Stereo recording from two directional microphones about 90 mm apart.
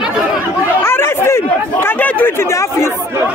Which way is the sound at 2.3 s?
30° left (ahead or behind).